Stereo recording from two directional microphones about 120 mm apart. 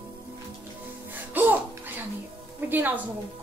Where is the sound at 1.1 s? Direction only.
15° right (ahead or behind).